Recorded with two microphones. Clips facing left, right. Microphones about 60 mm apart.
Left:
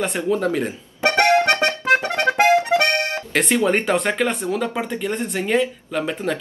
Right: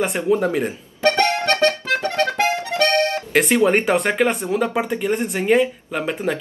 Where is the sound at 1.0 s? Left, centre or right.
Left.